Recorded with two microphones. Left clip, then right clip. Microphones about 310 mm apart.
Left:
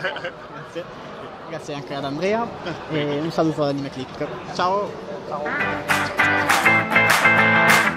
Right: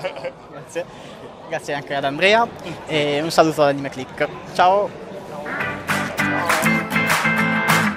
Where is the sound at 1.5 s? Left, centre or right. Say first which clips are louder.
Right 7 dB; right.